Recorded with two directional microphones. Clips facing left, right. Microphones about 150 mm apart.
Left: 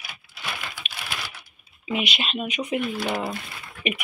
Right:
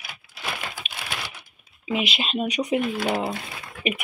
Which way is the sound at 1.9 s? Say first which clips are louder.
Right 1 dB; 30° right (ahead or behind).